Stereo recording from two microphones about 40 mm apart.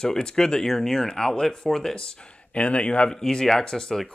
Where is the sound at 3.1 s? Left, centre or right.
Centre.